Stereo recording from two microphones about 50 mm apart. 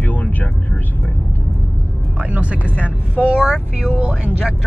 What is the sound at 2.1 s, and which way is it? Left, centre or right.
Speech, right.